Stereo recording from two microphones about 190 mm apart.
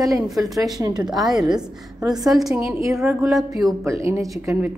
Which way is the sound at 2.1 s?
Centre (ahead or behind).